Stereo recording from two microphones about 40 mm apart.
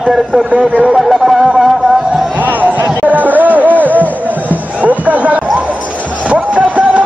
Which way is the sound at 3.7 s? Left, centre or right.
Left.